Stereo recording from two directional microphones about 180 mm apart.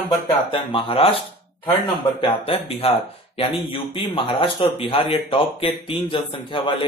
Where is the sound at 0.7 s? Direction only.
30° left (ahead or behind).